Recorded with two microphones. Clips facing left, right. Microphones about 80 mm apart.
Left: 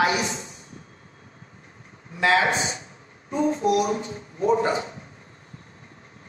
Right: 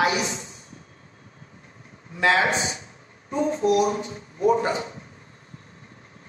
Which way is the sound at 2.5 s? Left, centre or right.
Left.